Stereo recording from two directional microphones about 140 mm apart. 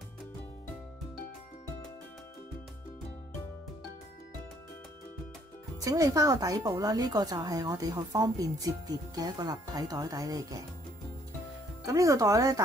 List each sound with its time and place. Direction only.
5.8 s speech: 25° right (ahead or behind)
11.8 s speech: 25° right (ahead or behind)